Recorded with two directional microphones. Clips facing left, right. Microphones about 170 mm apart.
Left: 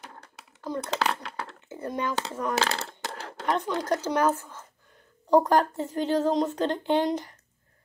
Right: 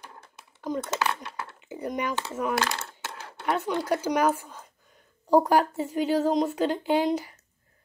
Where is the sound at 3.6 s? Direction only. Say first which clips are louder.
Right 1 dB; 10° right (ahead or behind).